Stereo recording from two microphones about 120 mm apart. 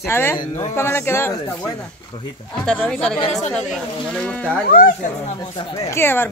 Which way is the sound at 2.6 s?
5° left (ahead or behind).